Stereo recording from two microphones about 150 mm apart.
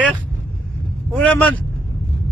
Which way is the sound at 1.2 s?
10° left (ahead or behind).